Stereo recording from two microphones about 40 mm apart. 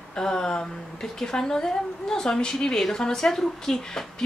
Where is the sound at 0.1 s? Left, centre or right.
Centre.